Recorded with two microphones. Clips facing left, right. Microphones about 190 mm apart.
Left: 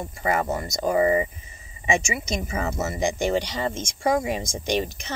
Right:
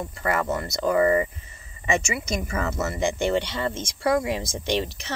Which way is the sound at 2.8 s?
60° right (ahead or behind).